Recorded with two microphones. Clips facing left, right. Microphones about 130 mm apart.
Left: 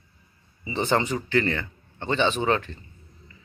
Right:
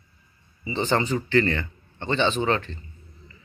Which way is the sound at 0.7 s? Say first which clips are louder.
Even; 15° left (ahead or behind).